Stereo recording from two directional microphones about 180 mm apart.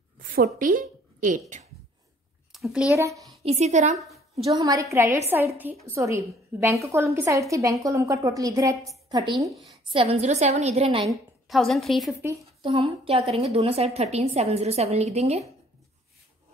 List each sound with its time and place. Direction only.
0.2 s a woman's voice: 55° right (ahead or behind)
2.5 s a child's voice: 5° right (ahead or behind)
3.0 s a woman's voice: 15° right (ahead or behind)
3.4 s a woman's voice: 40° right (ahead or behind)
4.0 s a sound: centre (ahead or behind)
4.5 s a woman's voice: 20° right (ahead or behind)
9.5 s a woman's voice: centre (ahead or behind)
9.8 s a woman's voice: 30° right (ahead or behind)
11.4 s a woman's voice: centre (ahead or behind)
12.6 s a woman's voice: 30° right (ahead or behind)